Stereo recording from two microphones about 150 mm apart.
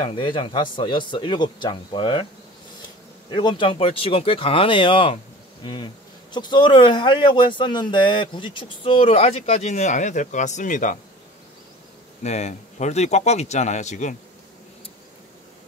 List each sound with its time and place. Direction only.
0.0 s speech: 35° left (ahead or behind)
3.3 s speech: 35° left (ahead or behind); by 11.0 s 60° left (ahead or behind)
12.2 s speech: 50° left (ahead or behind)